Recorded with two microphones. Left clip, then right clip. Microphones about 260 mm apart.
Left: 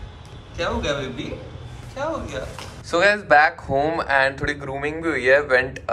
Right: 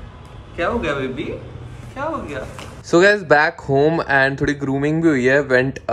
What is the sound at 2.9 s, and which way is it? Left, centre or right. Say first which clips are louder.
Speech: right 4 dB; right.